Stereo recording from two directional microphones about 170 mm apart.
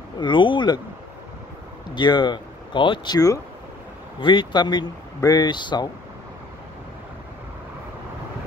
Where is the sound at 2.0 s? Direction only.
25° left (ahead or behind).